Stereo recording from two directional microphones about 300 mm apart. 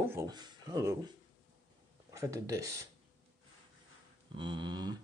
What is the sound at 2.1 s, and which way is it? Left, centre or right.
Speech, centre.